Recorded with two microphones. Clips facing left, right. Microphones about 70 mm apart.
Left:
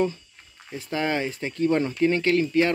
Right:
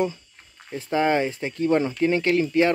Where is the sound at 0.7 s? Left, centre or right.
Right.